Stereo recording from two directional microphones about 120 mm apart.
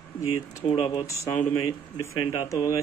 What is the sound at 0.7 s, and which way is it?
Speech, 45° left (ahead or behind).